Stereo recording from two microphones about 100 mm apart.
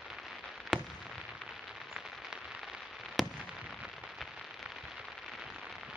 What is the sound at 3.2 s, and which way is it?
Fireworks, centre (ahead or behind).